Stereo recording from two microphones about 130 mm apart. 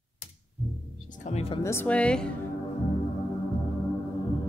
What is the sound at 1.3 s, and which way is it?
Speech, 50° left (ahead or behind).